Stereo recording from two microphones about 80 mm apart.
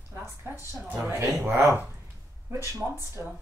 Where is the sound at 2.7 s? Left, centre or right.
Right.